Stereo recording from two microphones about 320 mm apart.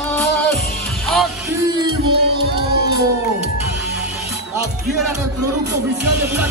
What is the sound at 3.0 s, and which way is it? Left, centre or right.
Music, right.